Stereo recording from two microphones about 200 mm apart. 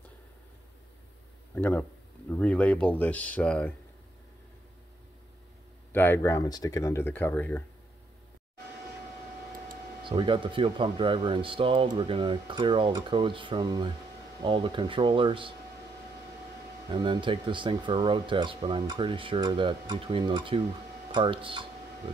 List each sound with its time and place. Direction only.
1.5 s speech: 10° left (ahead or behind)
5.9 s speech: 10° left (ahead or behind)
10.0 s speech: 25° right (ahead or behind)
16.9 s speech: 25° right (ahead or behind)